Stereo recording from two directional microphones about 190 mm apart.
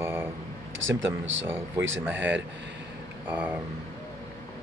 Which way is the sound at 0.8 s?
90° right.